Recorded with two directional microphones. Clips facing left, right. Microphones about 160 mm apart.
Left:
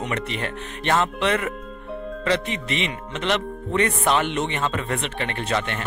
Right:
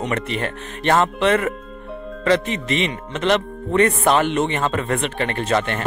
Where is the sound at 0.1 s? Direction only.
40° right (ahead or behind).